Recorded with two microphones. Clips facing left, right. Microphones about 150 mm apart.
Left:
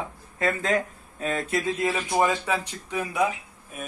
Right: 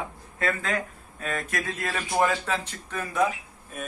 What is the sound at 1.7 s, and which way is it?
A man's voice, 15° left (ahead or behind).